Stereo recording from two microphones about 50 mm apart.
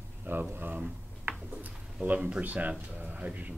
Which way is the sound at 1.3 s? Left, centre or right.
Right.